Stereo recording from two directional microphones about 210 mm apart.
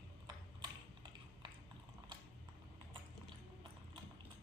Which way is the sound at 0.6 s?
20° right (ahead or behind).